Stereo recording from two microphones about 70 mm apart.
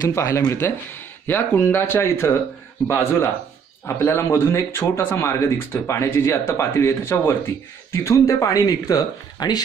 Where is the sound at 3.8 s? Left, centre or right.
Left.